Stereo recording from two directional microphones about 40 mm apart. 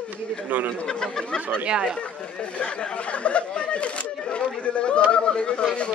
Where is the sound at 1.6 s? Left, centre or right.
Right.